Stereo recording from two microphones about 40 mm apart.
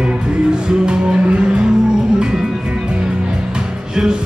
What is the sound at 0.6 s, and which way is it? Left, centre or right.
Music, right.